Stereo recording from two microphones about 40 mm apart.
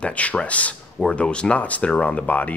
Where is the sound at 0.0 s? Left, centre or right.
Left.